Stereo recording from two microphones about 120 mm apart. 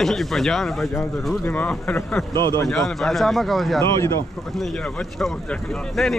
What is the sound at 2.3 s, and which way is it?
Speech, 35° right (ahead or behind).